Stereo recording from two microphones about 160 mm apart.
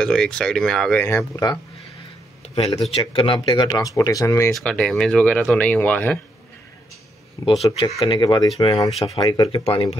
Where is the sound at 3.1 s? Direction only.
35° left (ahead or behind).